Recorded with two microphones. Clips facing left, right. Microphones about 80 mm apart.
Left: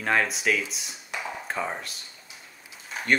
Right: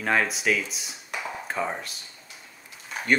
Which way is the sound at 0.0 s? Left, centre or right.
Centre.